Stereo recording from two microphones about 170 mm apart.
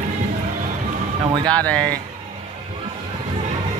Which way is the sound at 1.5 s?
5° left (ahead or behind).